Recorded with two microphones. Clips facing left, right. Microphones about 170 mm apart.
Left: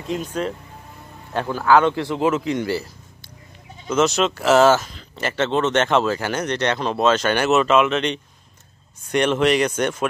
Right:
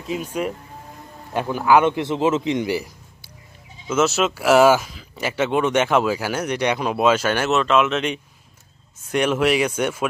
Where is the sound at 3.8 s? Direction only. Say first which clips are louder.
Left 1 dB; 5° right (ahead or behind).